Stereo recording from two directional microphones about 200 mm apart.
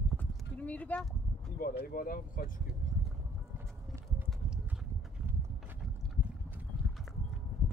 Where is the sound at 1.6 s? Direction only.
45° left (ahead or behind).